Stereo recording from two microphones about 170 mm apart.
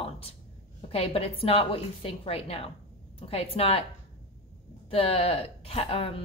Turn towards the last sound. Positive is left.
turn(degrees=35)  # may be behind; listen again after turning